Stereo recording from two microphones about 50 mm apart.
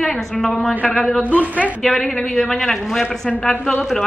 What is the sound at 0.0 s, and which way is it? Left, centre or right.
A woman's voice, centre.